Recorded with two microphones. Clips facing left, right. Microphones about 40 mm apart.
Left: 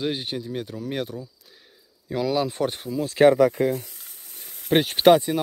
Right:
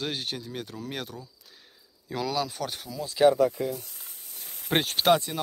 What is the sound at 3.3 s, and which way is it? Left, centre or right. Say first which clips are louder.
Speech: left 6 dB; left.